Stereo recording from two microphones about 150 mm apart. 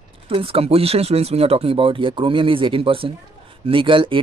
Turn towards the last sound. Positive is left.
turn(degrees=-35)  # may be behind; listen again after turning